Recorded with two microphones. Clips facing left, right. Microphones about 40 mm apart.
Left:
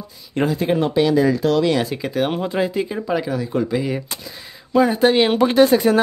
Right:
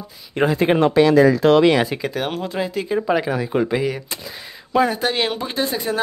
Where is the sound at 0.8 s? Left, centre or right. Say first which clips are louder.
Right 4 dB; right.